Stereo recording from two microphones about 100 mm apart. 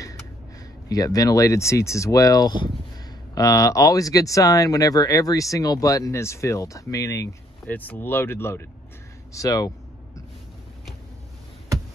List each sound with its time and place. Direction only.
0.8 s speech: 40° left (ahead or behind)
3.3 s speech: 35° left (ahead or behind)
7.6 s speech: 15° left (ahead or behind)
9.3 s speech: 35° left (ahead or behind)